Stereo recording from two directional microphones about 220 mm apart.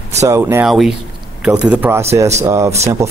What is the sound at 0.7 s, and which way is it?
Speech, centre (ahead or behind).